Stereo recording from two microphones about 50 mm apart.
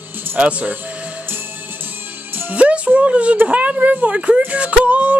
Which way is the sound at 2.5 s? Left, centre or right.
Right.